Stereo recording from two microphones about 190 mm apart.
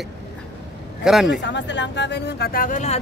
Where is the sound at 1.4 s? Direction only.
70° left (ahead or behind); by 2.9 s 40° left (ahead or behind).